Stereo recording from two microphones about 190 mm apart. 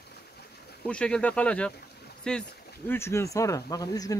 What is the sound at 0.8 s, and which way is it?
Speech, 5° left (ahead or behind).